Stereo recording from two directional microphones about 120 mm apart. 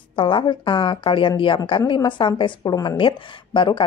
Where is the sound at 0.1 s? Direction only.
45° left (ahead or behind).